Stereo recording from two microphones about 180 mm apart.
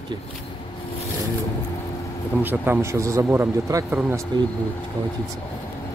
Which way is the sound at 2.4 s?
10° right (ahead or behind).